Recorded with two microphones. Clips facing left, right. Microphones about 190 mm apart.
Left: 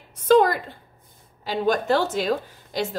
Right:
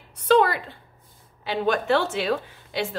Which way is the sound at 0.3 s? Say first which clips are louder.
Left 2 dB; 45° left (ahead or behind).